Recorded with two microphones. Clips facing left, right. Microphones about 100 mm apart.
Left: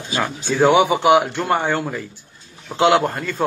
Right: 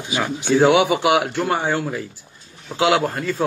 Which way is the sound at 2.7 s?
10° left (ahead or behind).